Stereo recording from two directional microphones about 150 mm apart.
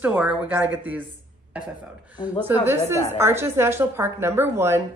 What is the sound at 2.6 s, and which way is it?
A woman's voice, 15° right (ahead or behind).